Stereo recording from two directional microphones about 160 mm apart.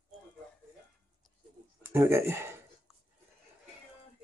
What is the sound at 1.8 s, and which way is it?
Speech, 15° right (ahead or behind).